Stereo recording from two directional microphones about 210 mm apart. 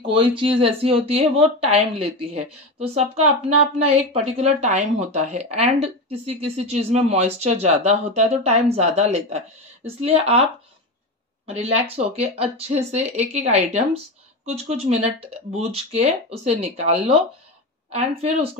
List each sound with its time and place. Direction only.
0.0 s speech: 25° right (ahead or behind)
11.4 s speech: 30° right (ahead or behind)